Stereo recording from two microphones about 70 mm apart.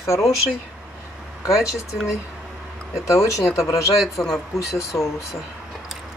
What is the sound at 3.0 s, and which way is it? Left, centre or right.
Speech, left.